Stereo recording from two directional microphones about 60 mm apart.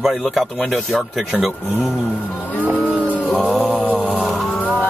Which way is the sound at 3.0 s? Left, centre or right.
Left.